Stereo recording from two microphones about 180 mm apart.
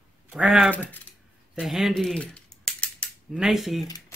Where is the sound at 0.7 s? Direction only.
10° left (ahead or behind).